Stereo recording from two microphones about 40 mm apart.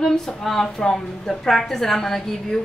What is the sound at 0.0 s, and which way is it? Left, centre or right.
A woman's voice, centre.